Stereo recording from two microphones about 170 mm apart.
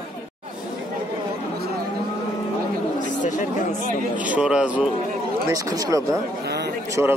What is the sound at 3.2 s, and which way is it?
Chatter, 50° left (ahead or behind).